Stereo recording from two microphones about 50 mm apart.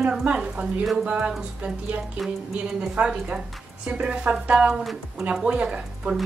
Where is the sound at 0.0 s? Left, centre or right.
Centre.